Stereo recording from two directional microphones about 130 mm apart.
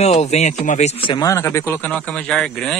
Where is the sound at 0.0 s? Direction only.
55° left (ahead or behind).